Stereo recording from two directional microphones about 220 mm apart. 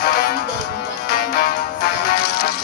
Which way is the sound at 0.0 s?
40° left (ahead or behind).